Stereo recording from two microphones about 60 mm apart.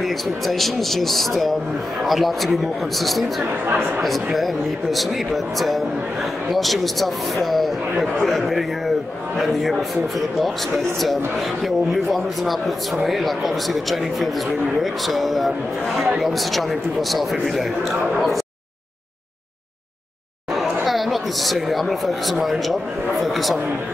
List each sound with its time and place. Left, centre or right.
0.0 s speech: centre
3.6 s speech: right
4.0 s speech: centre
11.6 s speech: centre
20.8 s speech: centre